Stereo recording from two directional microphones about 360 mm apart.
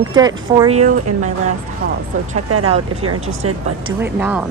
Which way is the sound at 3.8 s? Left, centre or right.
Centre.